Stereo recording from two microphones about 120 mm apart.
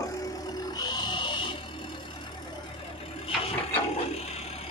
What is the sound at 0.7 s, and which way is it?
Pig, 35° left (ahead or behind).